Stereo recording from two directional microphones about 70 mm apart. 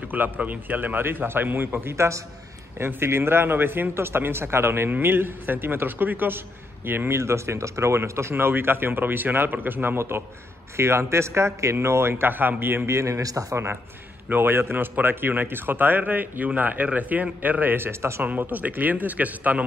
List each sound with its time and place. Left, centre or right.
0.1 s speech: right
2.0 s a man's voice: right
2.8 s a man's voice: right
14.3 s speech: right
18.2 s speech: right